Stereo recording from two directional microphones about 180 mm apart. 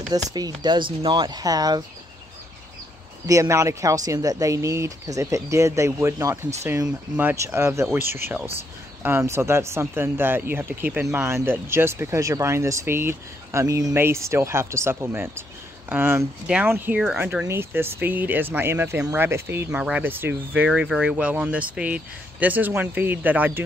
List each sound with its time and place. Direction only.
0.1 s speech: 20° right (ahead or behind)
3.3 s speech: 15° right (ahead or behind)